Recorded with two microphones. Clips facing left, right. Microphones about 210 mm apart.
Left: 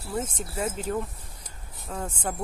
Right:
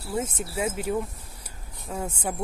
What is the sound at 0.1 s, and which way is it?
Speech, 10° right (ahead or behind).